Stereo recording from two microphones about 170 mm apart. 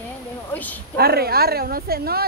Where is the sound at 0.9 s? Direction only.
65° right (ahead or behind).